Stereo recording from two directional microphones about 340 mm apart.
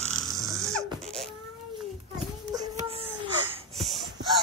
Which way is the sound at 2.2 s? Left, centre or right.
Centre.